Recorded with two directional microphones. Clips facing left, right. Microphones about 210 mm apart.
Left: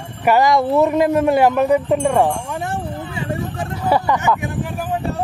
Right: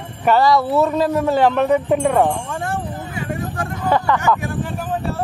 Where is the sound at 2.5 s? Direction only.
20° left (ahead or behind).